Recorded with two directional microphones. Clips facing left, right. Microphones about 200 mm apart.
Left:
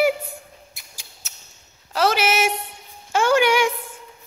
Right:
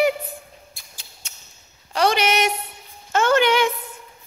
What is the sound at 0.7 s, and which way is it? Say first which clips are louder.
Mouse: even; 20° left (ahead or behind).